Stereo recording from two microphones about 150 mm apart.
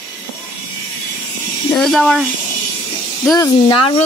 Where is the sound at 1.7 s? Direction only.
5° left (ahead or behind).